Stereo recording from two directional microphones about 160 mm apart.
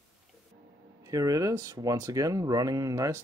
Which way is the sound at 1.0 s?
20° right (ahead or behind).